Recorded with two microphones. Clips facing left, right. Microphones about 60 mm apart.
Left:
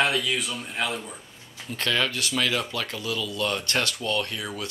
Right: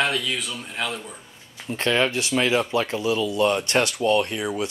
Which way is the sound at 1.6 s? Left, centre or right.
Right.